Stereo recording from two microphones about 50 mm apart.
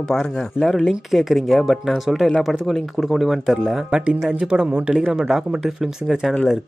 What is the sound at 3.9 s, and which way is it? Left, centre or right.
Speech, centre.